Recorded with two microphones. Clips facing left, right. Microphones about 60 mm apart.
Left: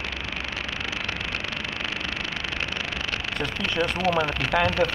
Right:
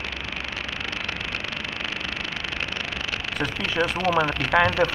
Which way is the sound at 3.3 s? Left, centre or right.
Centre.